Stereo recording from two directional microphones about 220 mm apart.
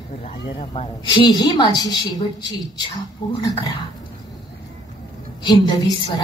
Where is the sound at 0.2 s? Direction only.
25° left (ahead or behind).